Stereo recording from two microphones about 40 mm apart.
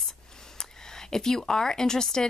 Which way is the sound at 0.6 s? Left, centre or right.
Centre.